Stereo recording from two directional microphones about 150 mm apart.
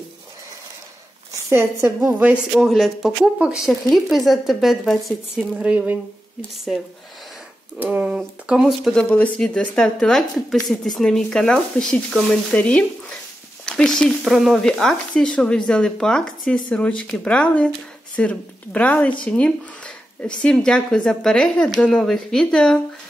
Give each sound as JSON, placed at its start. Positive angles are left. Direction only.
{"t": 1.5, "sound": "a woman's voice", "side_deg": -15}
{"t": 2.5, "sound": "speech", "side_deg": 0}
{"t": 7.8, "sound": "speech", "side_deg": -10}
{"t": 9.0, "sound": "speech", "side_deg": 10}